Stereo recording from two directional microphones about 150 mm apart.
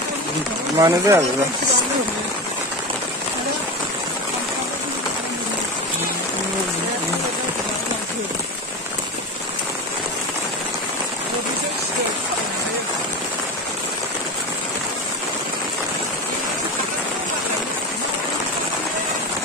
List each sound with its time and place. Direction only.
0.7 s speech: 20° right (ahead or behind)